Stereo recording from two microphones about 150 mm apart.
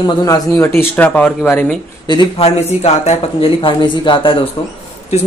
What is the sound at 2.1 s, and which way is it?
Speech, 40° left (ahead or behind).